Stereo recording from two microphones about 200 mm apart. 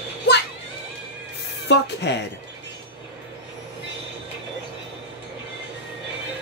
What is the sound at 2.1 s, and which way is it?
Speech, 60° left (ahead or behind).